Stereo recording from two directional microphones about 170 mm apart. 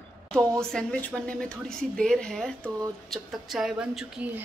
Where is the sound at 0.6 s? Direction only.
5° left (ahead or behind).